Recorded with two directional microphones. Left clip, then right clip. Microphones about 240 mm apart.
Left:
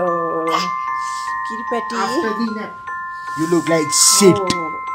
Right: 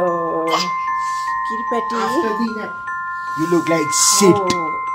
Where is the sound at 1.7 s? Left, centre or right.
Centre.